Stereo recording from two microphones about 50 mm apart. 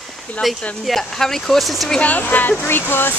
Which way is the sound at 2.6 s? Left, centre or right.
Left.